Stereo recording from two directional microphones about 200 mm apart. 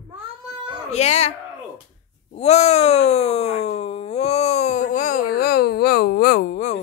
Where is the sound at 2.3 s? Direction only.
30° left (ahead or behind).